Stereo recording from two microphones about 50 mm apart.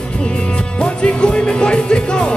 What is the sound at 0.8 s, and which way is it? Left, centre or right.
Music, centre.